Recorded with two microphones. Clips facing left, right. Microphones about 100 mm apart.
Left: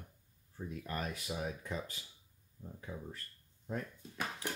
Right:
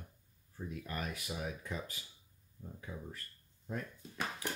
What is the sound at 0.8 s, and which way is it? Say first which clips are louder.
Speech: left 2 dB; 30° left (ahead or behind).